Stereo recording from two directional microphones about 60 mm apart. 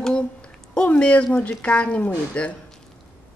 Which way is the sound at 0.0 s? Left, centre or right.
Centre.